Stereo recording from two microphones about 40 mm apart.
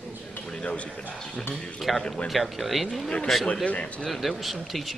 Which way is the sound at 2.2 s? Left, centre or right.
Centre.